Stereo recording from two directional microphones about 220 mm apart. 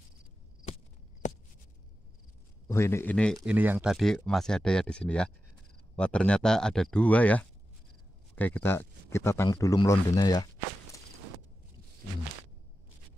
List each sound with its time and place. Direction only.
2.7 s speech: 10° left (ahead or behind)